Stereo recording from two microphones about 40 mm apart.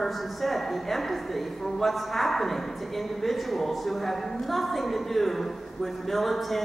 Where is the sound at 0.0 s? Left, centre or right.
Centre.